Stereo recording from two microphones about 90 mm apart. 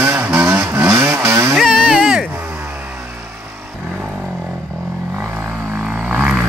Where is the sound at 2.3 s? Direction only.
25° right (ahead or behind).